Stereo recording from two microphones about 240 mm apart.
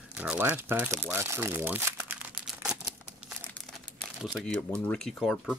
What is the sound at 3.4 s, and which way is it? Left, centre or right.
Speech, centre.